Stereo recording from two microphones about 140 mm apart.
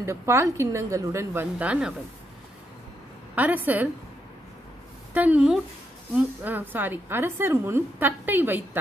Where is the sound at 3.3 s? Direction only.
10° right (ahead or behind).